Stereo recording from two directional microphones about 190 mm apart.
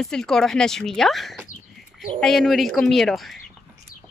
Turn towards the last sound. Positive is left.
turn(degrees=0)  # may be behind; listen again after turning